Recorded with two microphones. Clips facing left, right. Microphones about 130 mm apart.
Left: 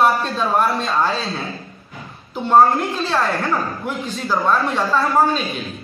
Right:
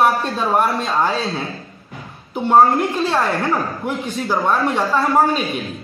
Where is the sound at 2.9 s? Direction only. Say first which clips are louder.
Right 2 dB; 25° right (ahead or behind).